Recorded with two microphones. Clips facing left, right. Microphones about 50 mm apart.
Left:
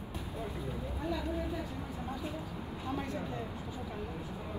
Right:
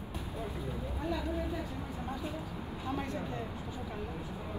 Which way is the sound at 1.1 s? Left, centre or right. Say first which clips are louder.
Right 1 dB; right.